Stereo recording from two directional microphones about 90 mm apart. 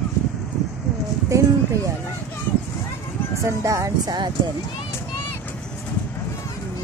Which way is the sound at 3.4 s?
35° right (ahead or behind).